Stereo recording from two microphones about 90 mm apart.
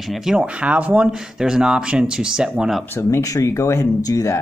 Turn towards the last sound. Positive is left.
turn(degrees=35)  # may be behind; listen again after turning